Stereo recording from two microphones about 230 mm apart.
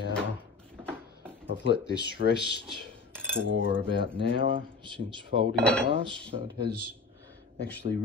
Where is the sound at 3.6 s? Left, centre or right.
Left.